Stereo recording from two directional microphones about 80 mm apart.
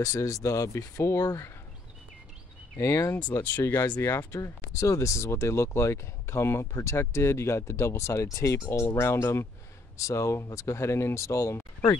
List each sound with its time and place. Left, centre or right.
0.0 s speech: left
2.8 s speech: left
4.2 s speech: left